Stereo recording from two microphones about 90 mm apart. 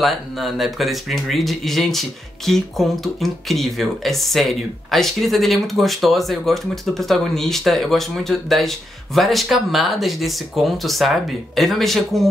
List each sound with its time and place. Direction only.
0.0 s speech: centre (ahead or behind)